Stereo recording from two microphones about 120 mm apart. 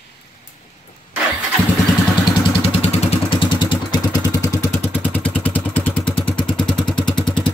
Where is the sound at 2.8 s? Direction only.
55° left (ahead or behind).